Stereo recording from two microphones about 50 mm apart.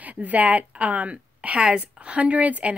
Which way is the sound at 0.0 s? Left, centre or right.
Right.